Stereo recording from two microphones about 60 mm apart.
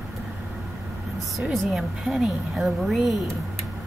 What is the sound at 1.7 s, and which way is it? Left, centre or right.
Speech, centre.